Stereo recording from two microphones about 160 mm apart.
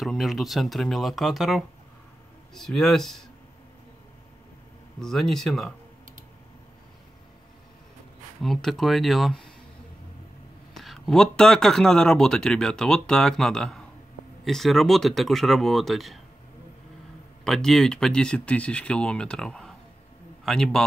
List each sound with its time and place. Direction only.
0.0 s speech: centre (ahead or behind)
5.0 s speech: centre (ahead or behind)
8.4 s speech: centre (ahead or behind)
10.7 s speech: centre (ahead or behind)
17.5 s speech: 5° left (ahead or behind)